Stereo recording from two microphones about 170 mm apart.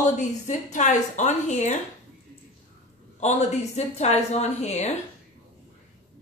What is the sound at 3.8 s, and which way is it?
A woman's voice, 40° left (ahead or behind).